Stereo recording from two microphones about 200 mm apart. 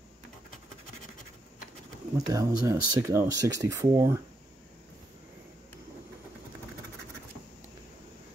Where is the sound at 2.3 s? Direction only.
15° right (ahead or behind).